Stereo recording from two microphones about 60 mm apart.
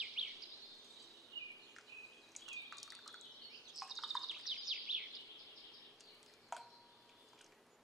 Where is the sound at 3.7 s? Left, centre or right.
Centre.